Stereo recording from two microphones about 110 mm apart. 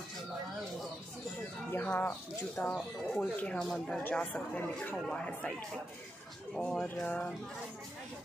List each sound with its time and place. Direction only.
1.7 s speech: 20° left (ahead or behind)
6.5 s speech: 10° left (ahead or behind)